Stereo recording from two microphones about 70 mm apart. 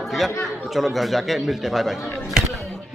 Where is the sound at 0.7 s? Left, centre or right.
Centre.